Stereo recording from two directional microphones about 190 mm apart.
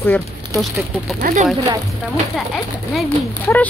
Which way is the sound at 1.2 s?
40° right (ahead or behind).